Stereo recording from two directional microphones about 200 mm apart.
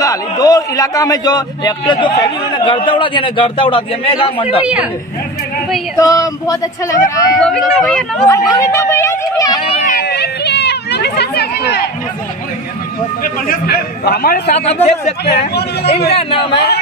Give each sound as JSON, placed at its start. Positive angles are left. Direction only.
{"t": 0.0, "sound": "a man's voice", "side_deg": 15}
{"t": 5.9, "sound": "speech", "side_deg": 15}
{"t": 7.3, "sound": "speech", "side_deg": 5}
{"t": 8.3, "sound": "speech", "side_deg": 15}
{"t": 9.7, "sound": "a sound", "side_deg": 35}
{"t": 9.9, "sound": "chatter", "side_deg": 55}
{"t": 13.2, "sound": "a man's voice", "side_deg": 45}
{"t": 14.6, "sound": "speech", "side_deg": 30}
{"t": 15.2, "sound": "a man's voice", "side_deg": 55}
{"t": 16.1, "sound": "a man's voice", "side_deg": 30}